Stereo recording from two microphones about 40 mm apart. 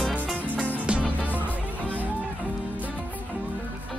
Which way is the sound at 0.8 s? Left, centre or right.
Right.